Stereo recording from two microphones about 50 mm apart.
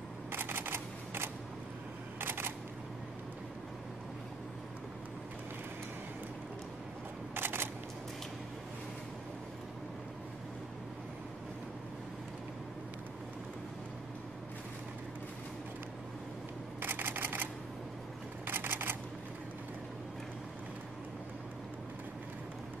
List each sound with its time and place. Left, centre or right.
0.3 s camera: right
7.3 s a sound: right
16.8 s camera: right
18.5 s camera: right